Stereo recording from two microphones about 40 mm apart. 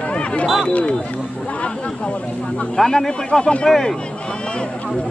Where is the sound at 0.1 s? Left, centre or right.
Left.